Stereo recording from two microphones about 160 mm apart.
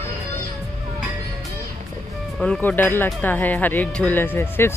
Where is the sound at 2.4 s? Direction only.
5° left (ahead or behind).